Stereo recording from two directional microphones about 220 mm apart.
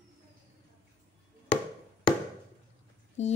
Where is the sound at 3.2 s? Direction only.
30° left (ahead or behind).